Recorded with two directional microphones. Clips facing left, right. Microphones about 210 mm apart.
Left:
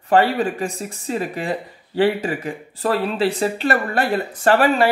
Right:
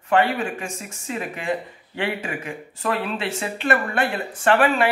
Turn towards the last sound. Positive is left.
turn(degrees=35)  # may be behind; listen again after turning